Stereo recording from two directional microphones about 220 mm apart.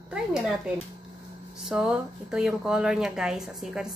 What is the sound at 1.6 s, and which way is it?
Speech, 5° right (ahead or behind).